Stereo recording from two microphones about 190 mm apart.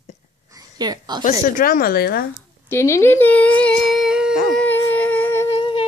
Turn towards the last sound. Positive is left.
turn(degrees=30)  # may be behind; listen again after turning